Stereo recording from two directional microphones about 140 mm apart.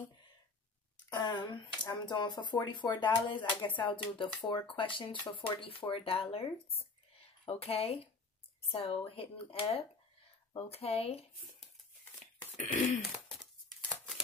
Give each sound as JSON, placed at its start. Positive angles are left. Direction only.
{"t": 1.1, "sound": "speech", "side_deg": 30}
{"t": 12.5, "sound": "throat clearing", "side_deg": 60}